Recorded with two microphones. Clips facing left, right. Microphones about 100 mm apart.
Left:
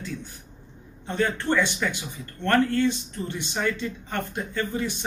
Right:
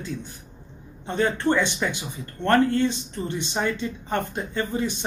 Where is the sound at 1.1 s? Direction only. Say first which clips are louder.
Right 2 dB; 25° right (ahead or behind).